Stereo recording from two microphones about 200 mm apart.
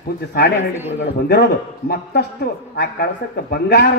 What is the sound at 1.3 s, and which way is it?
Speech, 55° left (ahead or behind).